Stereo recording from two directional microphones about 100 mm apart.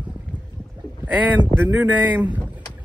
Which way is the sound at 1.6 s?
15° right (ahead or behind).